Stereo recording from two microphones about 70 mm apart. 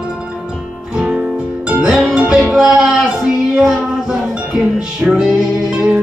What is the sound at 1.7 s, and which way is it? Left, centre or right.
Music, centre.